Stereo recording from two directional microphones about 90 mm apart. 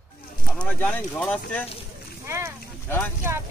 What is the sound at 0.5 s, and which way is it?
Speech, 10° left (ahead or behind).